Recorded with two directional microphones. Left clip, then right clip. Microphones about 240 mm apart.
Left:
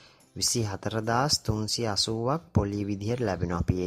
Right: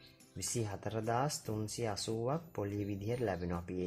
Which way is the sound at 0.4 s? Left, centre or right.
Centre.